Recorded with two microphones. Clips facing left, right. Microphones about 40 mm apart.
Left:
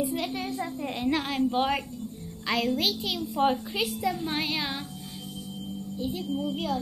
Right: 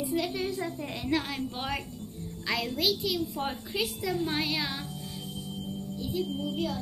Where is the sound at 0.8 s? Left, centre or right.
Centre.